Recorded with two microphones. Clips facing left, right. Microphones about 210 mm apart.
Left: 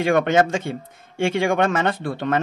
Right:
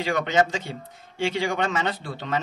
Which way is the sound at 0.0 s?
55° left (ahead or behind).